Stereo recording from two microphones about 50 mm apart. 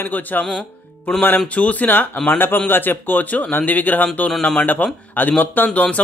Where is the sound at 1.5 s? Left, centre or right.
Left.